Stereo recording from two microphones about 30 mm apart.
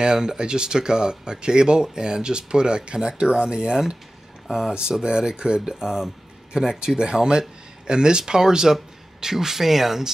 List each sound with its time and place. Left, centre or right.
0.0 s speech: right
5.3 s speech: right